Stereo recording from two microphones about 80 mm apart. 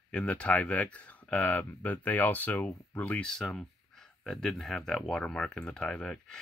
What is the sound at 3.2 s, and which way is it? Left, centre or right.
Speech, centre.